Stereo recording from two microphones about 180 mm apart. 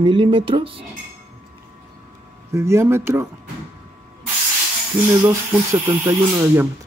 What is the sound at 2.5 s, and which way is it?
Speech, 15° right (ahead or behind).